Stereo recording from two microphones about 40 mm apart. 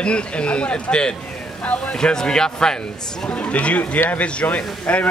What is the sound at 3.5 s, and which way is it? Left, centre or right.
Speech, left.